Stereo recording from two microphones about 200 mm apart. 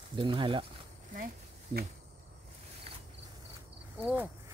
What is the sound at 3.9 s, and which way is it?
Speech, 10° right (ahead or behind).